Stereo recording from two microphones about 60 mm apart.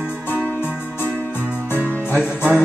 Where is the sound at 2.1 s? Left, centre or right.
Centre.